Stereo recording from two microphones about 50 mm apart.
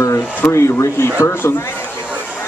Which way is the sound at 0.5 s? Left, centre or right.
Left.